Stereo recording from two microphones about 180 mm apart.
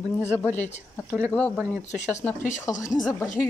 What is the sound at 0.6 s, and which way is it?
Speech, 40° left (ahead or behind).